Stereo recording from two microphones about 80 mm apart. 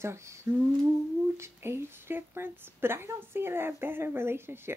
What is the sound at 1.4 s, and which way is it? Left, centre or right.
A woman's voice, right.